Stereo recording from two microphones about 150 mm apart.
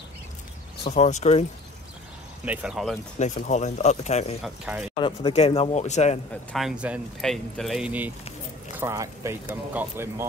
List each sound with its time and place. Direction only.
0.9 s speech: 45° left (ahead or behind)
2.4 s speech: 10° right (ahead or behind)
3.3 s speech: 55° left (ahead or behind)
4.4 s speech: 5° right (ahead or behind)
4.9 s speech: 35° left (ahead or behind); by 6.1 s 50° left (ahead or behind)
6.5 s speech: 5° right (ahead or behind)
8.7 s speech: 20° right (ahead or behind)